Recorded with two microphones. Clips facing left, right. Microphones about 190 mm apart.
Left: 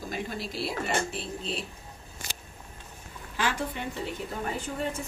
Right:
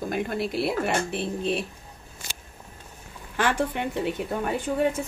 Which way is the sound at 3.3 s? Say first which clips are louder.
Right 6 dB; 60° right (ahead or behind).